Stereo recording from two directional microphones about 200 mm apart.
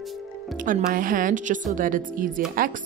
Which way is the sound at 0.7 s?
45° right (ahead or behind).